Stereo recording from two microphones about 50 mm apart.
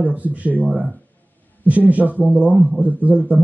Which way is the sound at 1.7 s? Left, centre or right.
Right.